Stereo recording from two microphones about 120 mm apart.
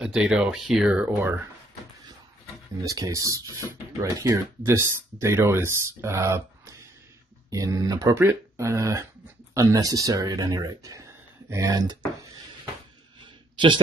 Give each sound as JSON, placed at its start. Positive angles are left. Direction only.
{"t": 0.0, "sound": "speech", "side_deg": -5}
{"t": 2.8, "sound": "speech", "side_deg": -30}
{"t": 8.1, "sound": "speech", "side_deg": -15}